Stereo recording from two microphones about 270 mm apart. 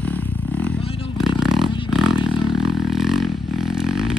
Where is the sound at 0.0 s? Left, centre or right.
Centre.